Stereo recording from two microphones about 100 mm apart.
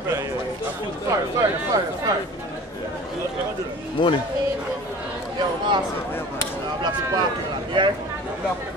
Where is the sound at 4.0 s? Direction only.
50° left (ahead or behind).